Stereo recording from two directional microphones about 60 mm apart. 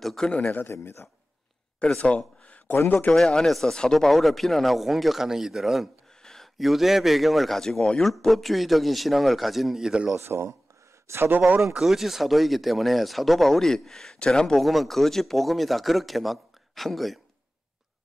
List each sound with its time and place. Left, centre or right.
0.0 s speech: centre
0.5 s speech: left
1.8 s a sound: centre
3.2 s speech: centre
6.2 s speech: centre
10.1 s speech: right
11.7 s speech: centre
14.6 s speech: centre